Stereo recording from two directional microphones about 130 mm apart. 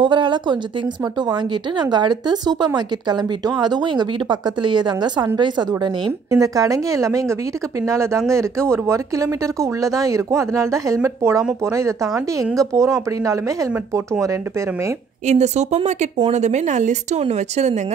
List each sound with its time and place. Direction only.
0.0 s speech: 40° right (ahead or behind)
15.2 s speech: 60° right (ahead or behind)